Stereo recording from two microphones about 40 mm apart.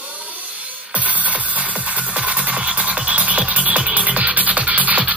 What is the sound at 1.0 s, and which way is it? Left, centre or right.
Music, right.